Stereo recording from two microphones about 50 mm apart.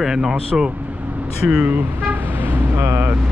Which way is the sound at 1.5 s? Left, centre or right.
Right.